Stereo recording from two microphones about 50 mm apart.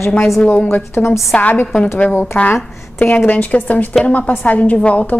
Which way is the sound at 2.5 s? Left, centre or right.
Left.